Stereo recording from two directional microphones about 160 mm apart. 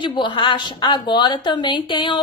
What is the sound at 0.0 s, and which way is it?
A woman's voice, 30° left (ahead or behind).